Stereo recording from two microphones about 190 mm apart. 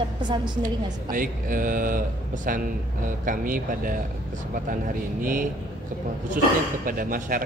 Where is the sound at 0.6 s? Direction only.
45° right (ahead or behind).